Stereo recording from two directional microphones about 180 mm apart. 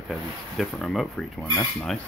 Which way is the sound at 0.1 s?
Centre (ahead or behind).